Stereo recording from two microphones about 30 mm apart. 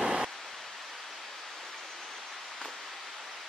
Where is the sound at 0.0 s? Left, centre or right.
Right.